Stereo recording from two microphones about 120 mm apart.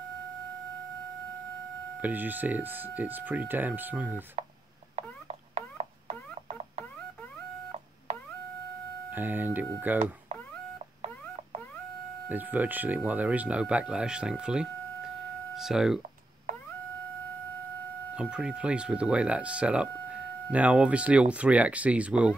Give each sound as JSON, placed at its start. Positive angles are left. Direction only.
{"t": 2.0, "sound": "speech", "side_deg": -15}
{"t": 4.9, "sound": "a sound", "side_deg": -65}
{"t": 9.1, "sound": "speech", "side_deg": -15}
{"t": 12.3, "sound": "speech", "side_deg": -15}
{"t": 18.1, "sound": "speech", "side_deg": -10}